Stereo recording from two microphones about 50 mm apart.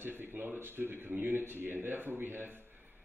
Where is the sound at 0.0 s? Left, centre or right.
Right.